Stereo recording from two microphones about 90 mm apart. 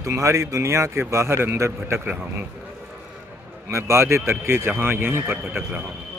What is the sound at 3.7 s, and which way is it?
A man's voice, 30° right (ahead or behind).